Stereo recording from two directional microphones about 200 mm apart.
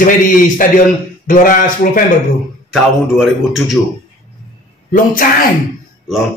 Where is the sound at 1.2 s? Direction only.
40° left (ahead or behind).